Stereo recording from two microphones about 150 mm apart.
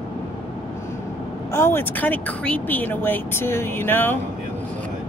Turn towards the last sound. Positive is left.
turn(degrees=15)  # may be behind; listen again after turning